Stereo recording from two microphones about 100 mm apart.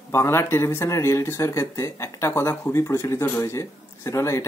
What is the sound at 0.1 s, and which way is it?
Speech, 25° left (ahead or behind).